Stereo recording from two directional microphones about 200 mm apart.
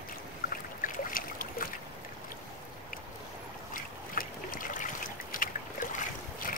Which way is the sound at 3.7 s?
45° left (ahead or behind).